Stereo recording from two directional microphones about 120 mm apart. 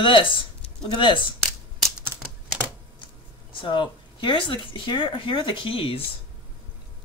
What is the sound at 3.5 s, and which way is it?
Speech, 45° left (ahead or behind).